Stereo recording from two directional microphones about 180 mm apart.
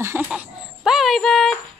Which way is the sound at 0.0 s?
10° right (ahead or behind).